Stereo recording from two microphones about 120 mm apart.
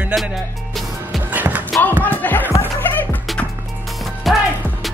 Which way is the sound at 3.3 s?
Centre (ahead or behind).